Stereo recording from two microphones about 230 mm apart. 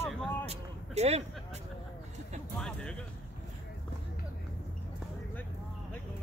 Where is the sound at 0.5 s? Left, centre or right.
Right.